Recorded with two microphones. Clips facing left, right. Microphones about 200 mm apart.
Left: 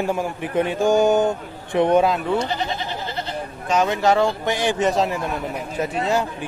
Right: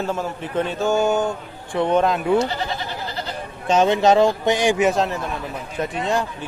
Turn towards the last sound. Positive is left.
turn(degrees=5)  # may be behind; listen again after turning